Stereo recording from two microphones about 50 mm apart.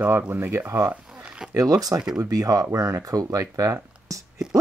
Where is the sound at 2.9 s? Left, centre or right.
Right.